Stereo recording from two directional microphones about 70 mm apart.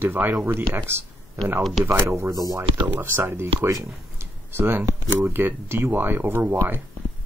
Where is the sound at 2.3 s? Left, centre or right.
Right.